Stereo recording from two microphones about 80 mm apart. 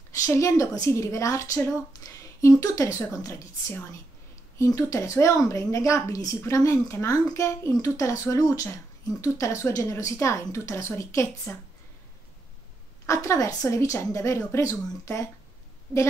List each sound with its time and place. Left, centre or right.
0.1 s speech: left
13.0 s speech: left